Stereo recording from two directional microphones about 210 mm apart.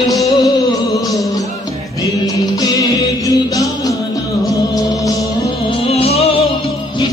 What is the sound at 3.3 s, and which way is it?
Music, 15° left (ahead or behind).